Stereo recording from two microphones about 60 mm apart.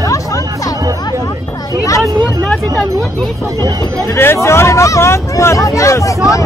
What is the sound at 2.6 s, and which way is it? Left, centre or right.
Speech, right.